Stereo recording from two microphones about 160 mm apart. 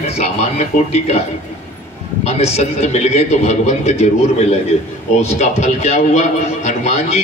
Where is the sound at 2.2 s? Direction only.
45° left (ahead or behind).